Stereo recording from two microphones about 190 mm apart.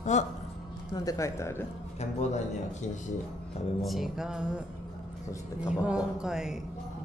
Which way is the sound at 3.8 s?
Centre (ahead or behind).